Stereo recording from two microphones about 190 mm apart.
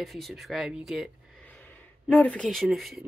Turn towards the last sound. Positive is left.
turn(degrees=0)  # may be behind; listen again after turning